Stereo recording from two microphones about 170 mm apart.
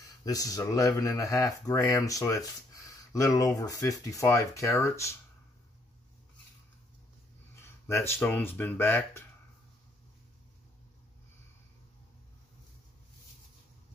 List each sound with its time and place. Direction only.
0.2 s speech: 20° left (ahead or behind)
7.8 s speech: 15° left (ahead or behind)